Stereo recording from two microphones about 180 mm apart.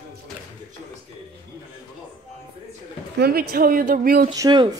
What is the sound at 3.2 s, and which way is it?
Speech, 60° right (ahead or behind).